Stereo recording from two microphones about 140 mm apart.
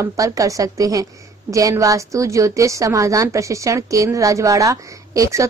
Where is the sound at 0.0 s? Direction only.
25° right (ahead or behind).